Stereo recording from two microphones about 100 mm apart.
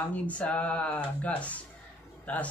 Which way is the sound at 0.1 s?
15° left (ahead or behind).